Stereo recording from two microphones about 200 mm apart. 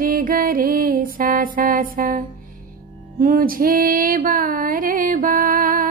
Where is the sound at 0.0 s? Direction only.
45° right (ahead or behind).